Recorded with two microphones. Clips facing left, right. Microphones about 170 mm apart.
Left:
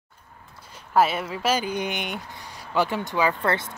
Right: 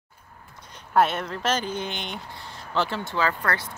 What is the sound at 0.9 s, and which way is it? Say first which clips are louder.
Speech: left 1 dB; 5° left (ahead or behind).